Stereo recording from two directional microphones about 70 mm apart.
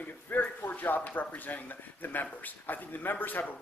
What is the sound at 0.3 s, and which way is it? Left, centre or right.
Speech, left.